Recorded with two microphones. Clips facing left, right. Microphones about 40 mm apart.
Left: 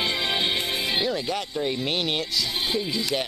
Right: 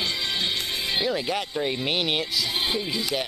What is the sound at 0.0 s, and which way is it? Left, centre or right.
Music, centre.